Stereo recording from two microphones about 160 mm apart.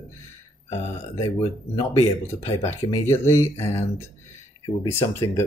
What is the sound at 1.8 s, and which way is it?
Speech, 20° left (ahead or behind).